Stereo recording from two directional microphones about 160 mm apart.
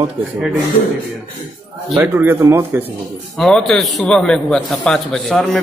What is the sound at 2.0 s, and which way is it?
Speech, 15° right (ahead or behind).